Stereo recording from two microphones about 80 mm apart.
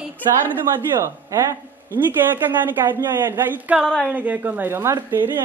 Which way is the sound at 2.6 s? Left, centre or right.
Right.